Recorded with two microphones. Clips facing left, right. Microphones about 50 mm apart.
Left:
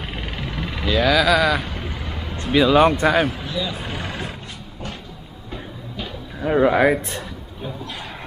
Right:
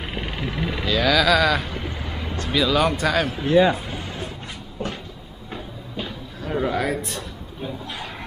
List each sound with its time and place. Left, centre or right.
0.0 s a sound: centre
0.8 s vehicle: centre
2.3 s speech: left
3.4 s speech: right
3.8 s vehicle: left
6.4 s speech: left